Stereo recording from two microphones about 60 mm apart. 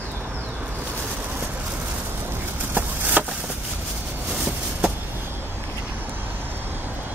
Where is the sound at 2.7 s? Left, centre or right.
Right.